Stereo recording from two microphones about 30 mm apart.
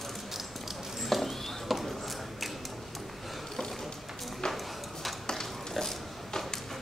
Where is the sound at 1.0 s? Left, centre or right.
Centre.